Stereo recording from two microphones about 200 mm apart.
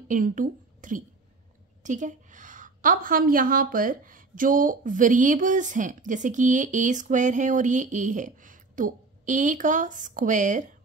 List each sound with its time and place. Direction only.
0.1 s a woman's voice: 40° right (ahead or behind)